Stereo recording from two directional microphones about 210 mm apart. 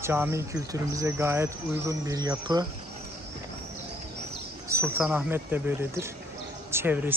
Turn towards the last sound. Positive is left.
turn(degrees=-10)  # may be behind; listen again after turning